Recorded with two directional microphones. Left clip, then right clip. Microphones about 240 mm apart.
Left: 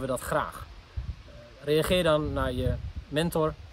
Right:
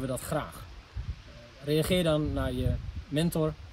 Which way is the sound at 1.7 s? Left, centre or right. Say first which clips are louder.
Left 3 dB; centre.